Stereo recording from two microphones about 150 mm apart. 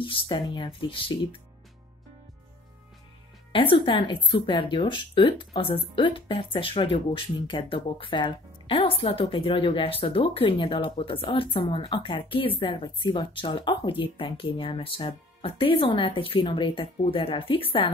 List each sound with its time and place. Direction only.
0.0 s a woman's voice: 35° left (ahead or behind)
3.5 s a woman's voice: 35° left (ahead or behind)